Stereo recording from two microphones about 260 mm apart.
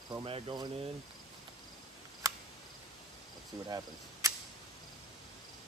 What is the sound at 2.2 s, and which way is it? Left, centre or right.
Cricket, centre.